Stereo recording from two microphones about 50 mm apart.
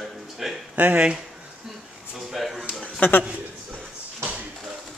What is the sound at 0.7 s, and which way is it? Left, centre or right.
Speech, right.